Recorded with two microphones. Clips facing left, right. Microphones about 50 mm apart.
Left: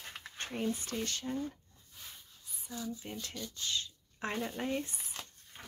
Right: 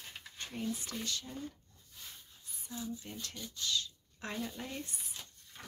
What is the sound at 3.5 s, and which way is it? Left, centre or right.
Speech, left.